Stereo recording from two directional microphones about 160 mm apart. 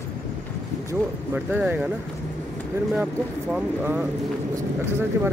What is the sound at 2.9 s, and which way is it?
Speech, 5° right (ahead or behind).